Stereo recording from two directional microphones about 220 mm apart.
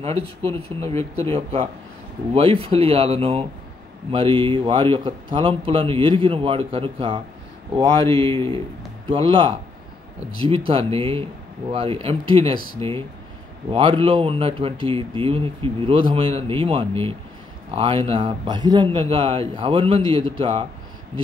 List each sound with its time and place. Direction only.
0.0 s speech: 25° right (ahead or behind)
0.8 s speech: 15° left (ahead or behind)
1.3 s speech: 25° right (ahead or behind)
10.7 s speech: 25° right (ahead or behind)